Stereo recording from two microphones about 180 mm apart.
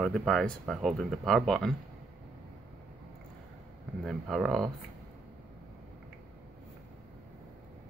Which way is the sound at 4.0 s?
Centre (ahead or behind).